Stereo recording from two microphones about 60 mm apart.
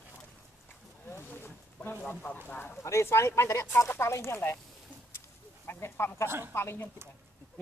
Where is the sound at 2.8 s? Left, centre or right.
Left.